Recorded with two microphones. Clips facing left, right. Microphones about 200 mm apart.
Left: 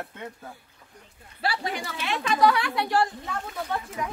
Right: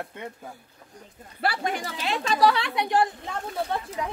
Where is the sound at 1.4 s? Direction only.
50° right (ahead or behind); by 3.1 s 20° right (ahead or behind).